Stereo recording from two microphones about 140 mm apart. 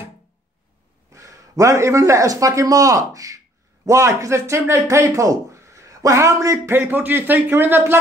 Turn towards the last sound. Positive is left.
turn(degrees=-15)  # may be behind; listen again after turning